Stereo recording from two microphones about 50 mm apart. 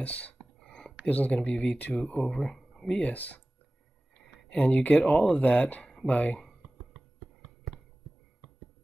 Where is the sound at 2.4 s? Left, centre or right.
Centre.